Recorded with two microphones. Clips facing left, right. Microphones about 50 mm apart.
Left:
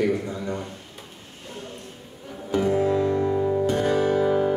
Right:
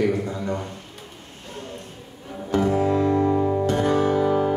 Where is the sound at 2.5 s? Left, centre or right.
Centre.